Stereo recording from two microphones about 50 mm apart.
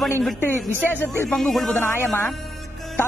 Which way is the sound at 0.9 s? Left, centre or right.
Left.